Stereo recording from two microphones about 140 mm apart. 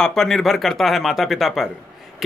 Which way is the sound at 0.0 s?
Centre (ahead or behind).